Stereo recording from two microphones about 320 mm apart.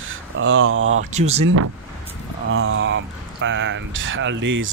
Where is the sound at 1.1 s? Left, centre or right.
Centre.